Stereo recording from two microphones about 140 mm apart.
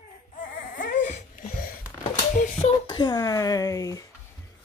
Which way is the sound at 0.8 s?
65° left (ahead or behind).